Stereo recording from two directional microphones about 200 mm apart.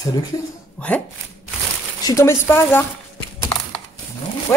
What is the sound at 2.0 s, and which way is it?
Speech, 15° left (ahead or behind).